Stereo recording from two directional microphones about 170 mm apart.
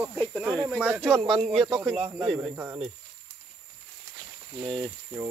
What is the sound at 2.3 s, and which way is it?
Speech, 15° right (ahead or behind).